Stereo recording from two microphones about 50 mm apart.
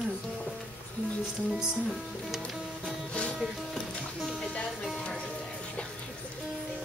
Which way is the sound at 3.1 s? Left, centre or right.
Left.